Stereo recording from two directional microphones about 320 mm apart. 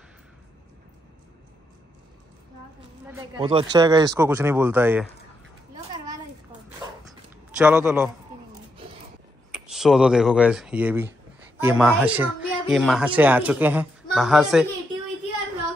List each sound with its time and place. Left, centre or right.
3.1 s speech: centre
7.5 s speech: centre
9.5 s speech: centre